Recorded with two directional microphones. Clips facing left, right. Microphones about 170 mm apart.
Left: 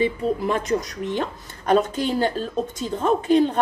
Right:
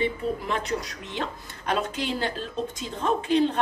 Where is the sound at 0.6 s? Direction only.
45° left (ahead or behind).